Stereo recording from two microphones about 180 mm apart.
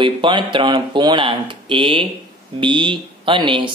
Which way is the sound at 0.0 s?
25° right (ahead or behind).